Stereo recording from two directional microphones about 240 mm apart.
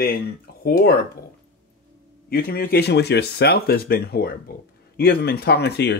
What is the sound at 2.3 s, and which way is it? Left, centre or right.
Speech, left.